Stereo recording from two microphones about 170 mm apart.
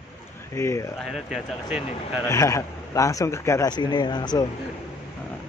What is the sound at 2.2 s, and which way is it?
A man's voice, 15° left (ahead or behind).